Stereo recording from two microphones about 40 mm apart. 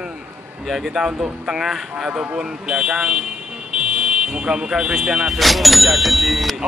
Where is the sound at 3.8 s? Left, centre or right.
Centre.